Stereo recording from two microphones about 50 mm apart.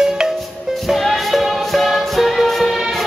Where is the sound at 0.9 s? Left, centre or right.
Centre.